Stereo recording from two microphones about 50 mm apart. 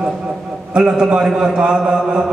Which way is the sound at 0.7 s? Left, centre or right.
Centre.